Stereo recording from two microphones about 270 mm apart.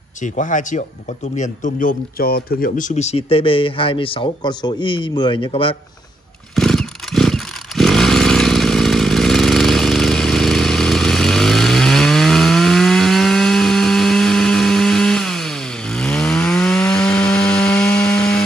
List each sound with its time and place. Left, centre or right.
0.2 s a man's voice: left
6.5 s motorcycle: centre